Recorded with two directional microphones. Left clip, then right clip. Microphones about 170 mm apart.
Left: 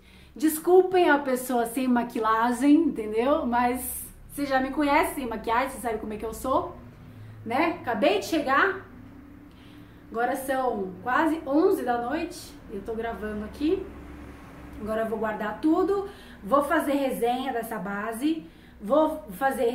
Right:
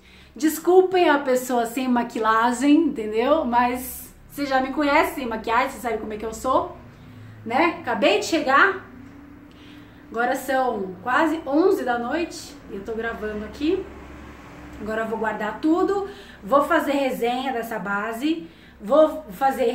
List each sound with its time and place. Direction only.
0.4 s a woman's voice: centre (ahead or behind)
10.1 s a woman's voice: 5° right (ahead or behind)
14.9 s a woman's voice: centre (ahead or behind)